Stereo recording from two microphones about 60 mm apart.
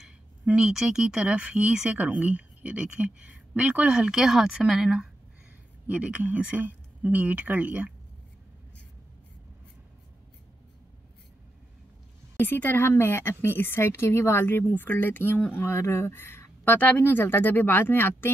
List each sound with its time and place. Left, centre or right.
0.0 s a woman's voice: centre
5.9 s a woman's voice: right
12.4 s a woman's voice: left